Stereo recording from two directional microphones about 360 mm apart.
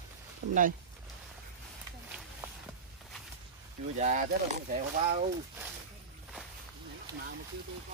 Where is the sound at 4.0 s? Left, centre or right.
Centre.